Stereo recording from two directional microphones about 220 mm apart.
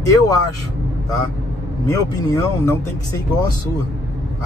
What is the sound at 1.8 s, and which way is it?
Speech, 15° left (ahead or behind).